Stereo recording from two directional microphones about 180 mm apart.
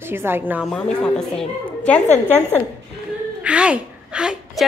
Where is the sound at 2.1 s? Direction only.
40° left (ahead or behind).